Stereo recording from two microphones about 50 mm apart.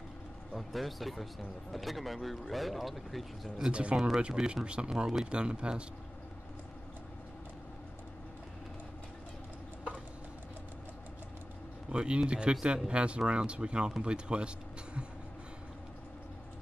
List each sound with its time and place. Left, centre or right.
0.6 s speech: centre
3.6 s speech: centre
11.9 s speech: centre